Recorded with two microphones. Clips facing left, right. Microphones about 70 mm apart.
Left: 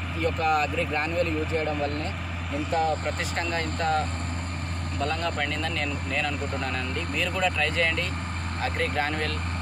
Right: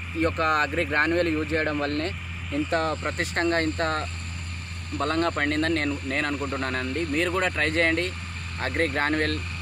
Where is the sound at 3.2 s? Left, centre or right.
Right.